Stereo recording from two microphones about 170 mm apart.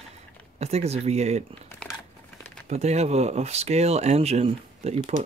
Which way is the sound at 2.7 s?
40° right (ahead or behind).